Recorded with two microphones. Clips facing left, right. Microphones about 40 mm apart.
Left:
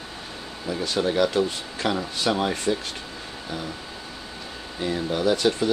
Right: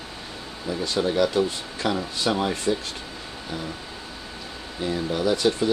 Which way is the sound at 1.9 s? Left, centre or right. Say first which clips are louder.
Even; centre.